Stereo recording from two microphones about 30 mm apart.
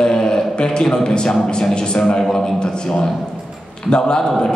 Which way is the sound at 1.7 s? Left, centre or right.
Left.